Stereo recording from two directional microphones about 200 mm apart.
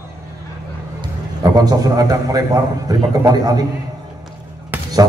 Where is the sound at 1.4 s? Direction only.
20° right (ahead or behind).